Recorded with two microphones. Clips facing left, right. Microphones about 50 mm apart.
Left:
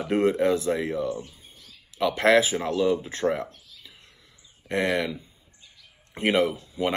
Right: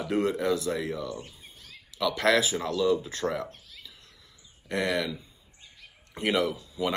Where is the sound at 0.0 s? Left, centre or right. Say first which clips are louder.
Left 5 dB; left.